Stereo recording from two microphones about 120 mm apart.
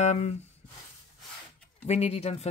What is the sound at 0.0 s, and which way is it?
Speech, 70° left (ahead or behind).